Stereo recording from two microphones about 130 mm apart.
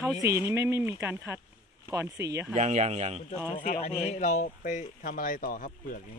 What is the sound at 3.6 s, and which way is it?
Speech, 70° left (ahead or behind).